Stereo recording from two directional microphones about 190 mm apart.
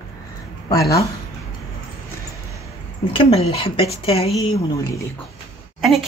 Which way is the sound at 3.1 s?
30° left (ahead or behind).